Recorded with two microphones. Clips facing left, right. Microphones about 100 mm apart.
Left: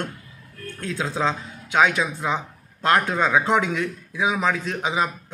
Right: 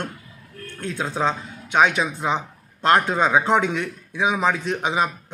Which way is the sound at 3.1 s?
5° right (ahead or behind).